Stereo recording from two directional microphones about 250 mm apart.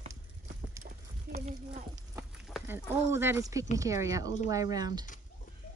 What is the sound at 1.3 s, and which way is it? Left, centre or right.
Speech, right.